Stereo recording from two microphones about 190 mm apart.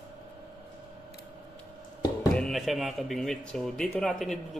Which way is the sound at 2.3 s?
Centre (ahead or behind).